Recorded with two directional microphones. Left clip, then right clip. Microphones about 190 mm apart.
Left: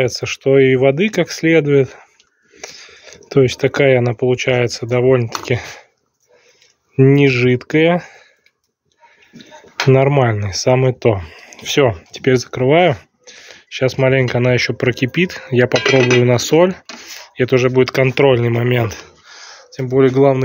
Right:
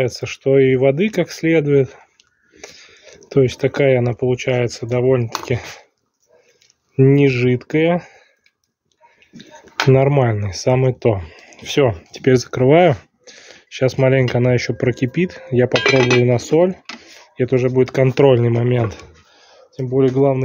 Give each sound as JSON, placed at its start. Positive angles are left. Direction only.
{"t": 0.0, "sound": "speech", "side_deg": 0}
{"t": 7.0, "sound": "speech", "side_deg": 0}
{"t": 9.5, "sound": "speech", "side_deg": -5}
{"t": 19.3, "sound": "a sound", "side_deg": 0}